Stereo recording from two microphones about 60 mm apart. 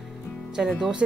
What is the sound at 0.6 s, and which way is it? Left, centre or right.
Speech, centre.